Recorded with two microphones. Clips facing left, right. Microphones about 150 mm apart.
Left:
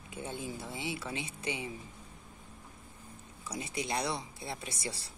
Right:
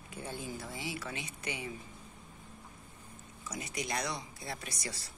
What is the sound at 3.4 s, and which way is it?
Speech, 30° left (ahead or behind).